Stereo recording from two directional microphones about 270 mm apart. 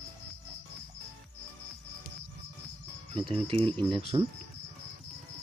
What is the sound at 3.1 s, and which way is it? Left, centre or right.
Speech, right.